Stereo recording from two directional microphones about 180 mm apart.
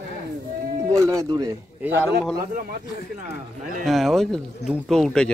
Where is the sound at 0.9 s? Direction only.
20° right (ahead or behind).